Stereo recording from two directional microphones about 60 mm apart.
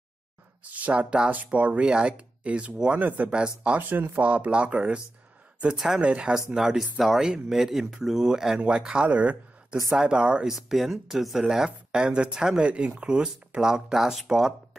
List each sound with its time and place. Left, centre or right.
0.7 s speech: right
3.9 s speech: right
6.5 s speech: centre
10.7 s speech: centre